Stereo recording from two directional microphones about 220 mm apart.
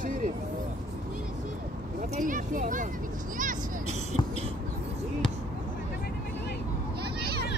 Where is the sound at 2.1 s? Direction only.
35° right (ahead or behind).